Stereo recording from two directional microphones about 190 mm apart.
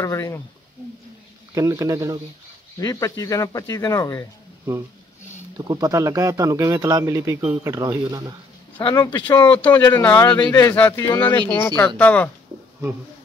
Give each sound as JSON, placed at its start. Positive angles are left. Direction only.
{"t": 0.0, "sound": "speech", "side_deg": 15}
{"t": 1.5, "sound": "speech", "side_deg": -15}
{"t": 2.8, "sound": "speech", "side_deg": 20}
{"t": 5.6, "sound": "speech", "side_deg": -20}
{"t": 8.7, "sound": "speech", "side_deg": 20}
{"t": 9.5, "sound": "speech", "side_deg": 10}